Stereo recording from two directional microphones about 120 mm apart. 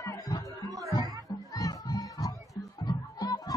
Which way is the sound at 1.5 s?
30° left (ahead or behind).